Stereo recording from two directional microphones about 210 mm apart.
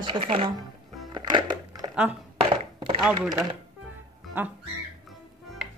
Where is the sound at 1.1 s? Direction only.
20° right (ahead or behind).